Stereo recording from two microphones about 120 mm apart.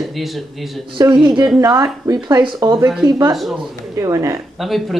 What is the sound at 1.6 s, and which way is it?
Speech, 30° right (ahead or behind).